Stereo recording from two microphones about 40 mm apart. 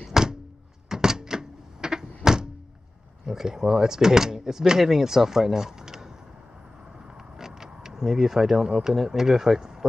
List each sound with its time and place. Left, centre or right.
0.1 s thunk: centre
0.8 s door: centre
3.3 s speech: centre
7.2 s vehicle: centre
8.7 s speech: centre